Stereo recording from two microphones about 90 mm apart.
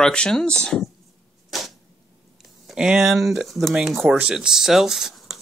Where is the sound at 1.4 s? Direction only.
Centre (ahead or behind).